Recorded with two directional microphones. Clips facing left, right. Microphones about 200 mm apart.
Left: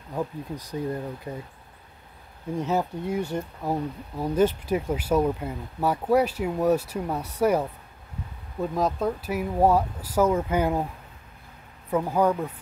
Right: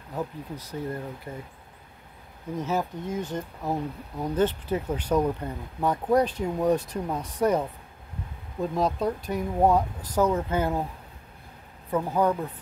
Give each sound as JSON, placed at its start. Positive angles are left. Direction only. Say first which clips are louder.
{"t": 0.1, "sound": "speech", "louder": "left 2 dB", "side_deg": 15}
{"t": 2.5, "sound": "speech", "louder": "left 2 dB", "side_deg": 15}
{"t": 3.2, "sound": "speech", "louder": "left 2 dB", "side_deg": -20}
{"t": 3.6, "sound": "speech", "louder": "even", "side_deg": 10}
{"t": 11.9, "sound": "speech", "louder": "left 2 dB", "side_deg": 10}